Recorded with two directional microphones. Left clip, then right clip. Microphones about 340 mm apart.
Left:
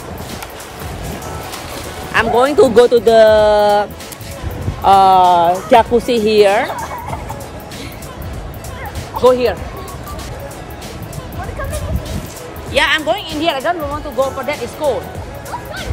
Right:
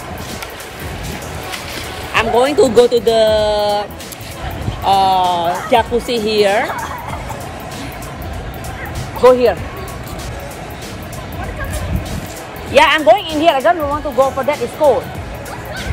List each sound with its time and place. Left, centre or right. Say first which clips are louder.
2.1 s speech: left 1 dB; centre
4.8 s speech: left 4 dB; left
9.2 s a woman's voice: right 2 dB; centre
12.7 s a woman's voice: right 5 dB; centre